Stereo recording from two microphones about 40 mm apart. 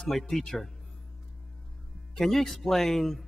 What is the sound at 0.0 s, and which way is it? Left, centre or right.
Speech, centre.